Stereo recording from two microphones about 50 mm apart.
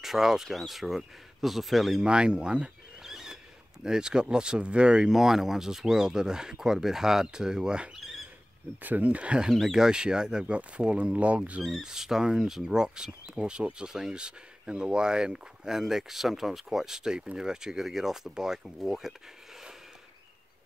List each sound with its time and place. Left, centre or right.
0.0 s speech: centre
2.0 s speech: centre
3.0 s a sound: centre
3.8 s speech: centre
5.1 s speech: centre
8.8 s speech: right
9.5 s speech: centre; by 11.6 s right
11.8 s speech: centre